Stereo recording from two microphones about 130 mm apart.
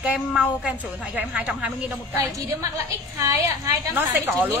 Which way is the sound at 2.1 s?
25° right (ahead or behind).